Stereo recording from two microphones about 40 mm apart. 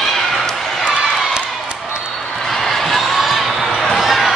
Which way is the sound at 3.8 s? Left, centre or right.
Centre.